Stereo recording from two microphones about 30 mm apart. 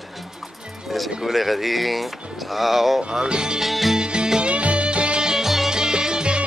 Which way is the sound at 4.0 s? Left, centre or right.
Right.